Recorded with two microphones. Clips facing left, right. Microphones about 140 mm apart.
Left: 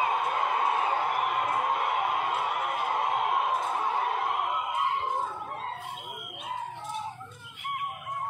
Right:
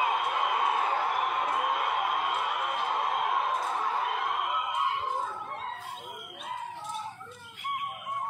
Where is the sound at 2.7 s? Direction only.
10° left (ahead or behind).